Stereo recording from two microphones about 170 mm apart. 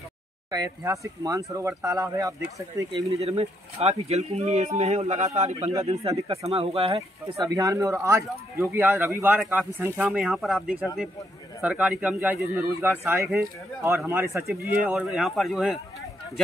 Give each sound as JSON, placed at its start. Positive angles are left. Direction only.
{"t": 0.5, "sound": "speech", "side_deg": -20}
{"t": 3.2, "sound": "speech", "side_deg": -35}
{"t": 7.4, "sound": "a man's voice", "side_deg": -20}